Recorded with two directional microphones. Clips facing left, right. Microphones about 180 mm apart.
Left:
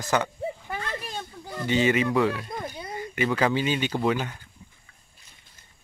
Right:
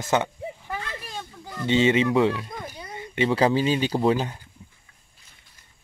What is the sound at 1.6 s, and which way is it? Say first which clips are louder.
Speech: right 3 dB; 25° right (ahead or behind).